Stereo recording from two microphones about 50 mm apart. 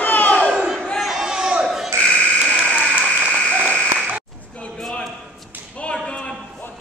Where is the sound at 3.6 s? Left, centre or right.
Left.